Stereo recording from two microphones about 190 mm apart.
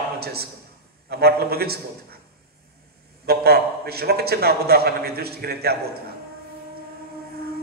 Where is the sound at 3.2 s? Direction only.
55° right (ahead or behind).